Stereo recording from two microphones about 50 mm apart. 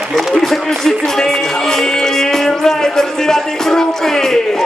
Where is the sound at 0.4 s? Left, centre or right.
Centre.